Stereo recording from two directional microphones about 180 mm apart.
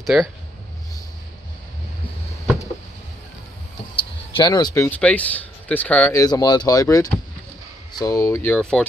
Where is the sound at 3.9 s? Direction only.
25° left (ahead or behind).